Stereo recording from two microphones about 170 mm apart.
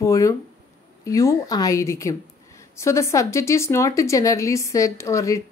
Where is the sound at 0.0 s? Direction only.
20° left (ahead or behind).